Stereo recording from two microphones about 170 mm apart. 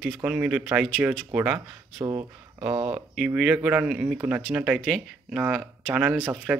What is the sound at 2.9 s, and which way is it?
Speech, 5° right (ahead or behind).